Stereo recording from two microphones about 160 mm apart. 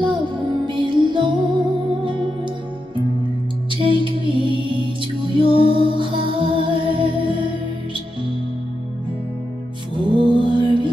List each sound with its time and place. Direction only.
0.0 s music: 30° right (ahead or behind)
3.7 s music: 30° right (ahead or behind)
9.9 s mantra: 30° right (ahead or behind)